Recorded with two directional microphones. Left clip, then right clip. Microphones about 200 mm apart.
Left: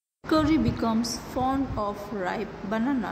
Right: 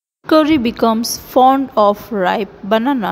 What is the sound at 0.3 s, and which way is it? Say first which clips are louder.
A woman's voice: right 11 dB; 40° right (ahead or behind).